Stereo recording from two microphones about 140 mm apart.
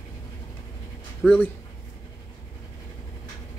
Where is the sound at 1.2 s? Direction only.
10° left (ahead or behind).